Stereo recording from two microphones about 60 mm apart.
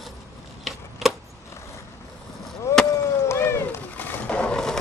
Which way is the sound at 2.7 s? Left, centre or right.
Left.